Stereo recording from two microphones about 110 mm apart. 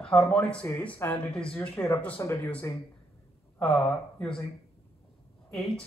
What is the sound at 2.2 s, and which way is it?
Speech, 25° left (ahead or behind).